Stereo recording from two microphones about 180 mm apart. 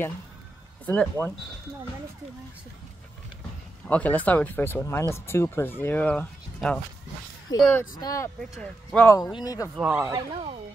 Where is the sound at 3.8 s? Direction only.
10° left (ahead or behind).